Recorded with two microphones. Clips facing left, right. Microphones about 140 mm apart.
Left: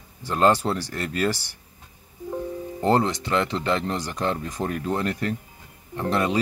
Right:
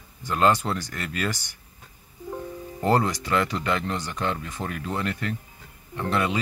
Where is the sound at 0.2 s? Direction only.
35° left (ahead or behind).